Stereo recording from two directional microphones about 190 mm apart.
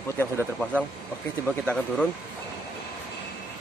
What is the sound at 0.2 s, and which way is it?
Speech, 10° left (ahead or behind).